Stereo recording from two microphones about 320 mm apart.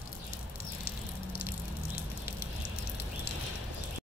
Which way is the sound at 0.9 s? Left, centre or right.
Left.